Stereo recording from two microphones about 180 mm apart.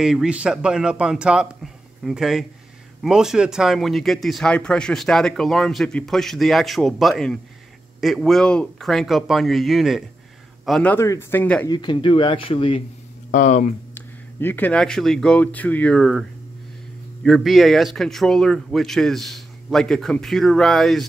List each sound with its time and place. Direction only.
0.0 s speech: 5° right (ahead or behind)
11.7 s speech: 25° left (ahead or behind)
13.3 s speech: 45° left (ahead or behind)
13.9 s speech: 10° left (ahead or behind)